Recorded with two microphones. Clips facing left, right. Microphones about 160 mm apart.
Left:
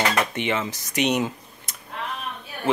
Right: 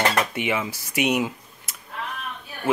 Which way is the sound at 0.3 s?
10° right (ahead or behind).